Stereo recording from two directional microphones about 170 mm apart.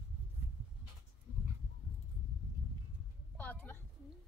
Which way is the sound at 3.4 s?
10° left (ahead or behind).